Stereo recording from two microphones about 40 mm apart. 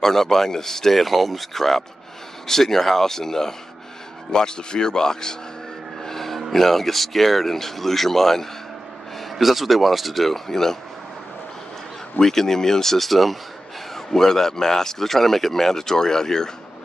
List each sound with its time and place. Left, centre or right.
0.0 s a man's voice: centre
6.0 s vehicle: centre
6.5 s speech: centre
12.2 s a man's voice: centre